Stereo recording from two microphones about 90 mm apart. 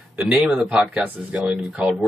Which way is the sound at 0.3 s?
10° right (ahead or behind).